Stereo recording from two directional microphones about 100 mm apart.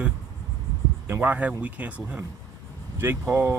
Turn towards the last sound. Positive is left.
turn(degrees=-25)  # may be behind; listen again after turning